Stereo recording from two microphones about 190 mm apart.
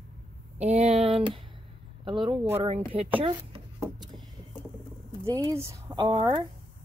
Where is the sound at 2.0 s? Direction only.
25° right (ahead or behind).